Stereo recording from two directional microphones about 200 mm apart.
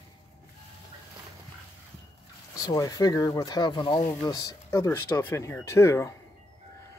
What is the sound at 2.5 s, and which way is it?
Speech, 15° left (ahead or behind).